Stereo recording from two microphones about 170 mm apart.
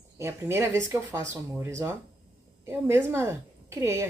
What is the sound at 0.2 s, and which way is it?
Speech, 15° right (ahead or behind).